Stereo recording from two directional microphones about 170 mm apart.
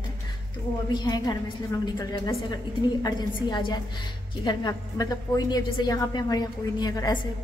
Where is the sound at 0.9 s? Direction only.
25° left (ahead or behind).